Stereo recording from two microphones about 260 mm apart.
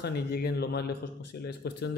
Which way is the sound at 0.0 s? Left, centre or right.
Left.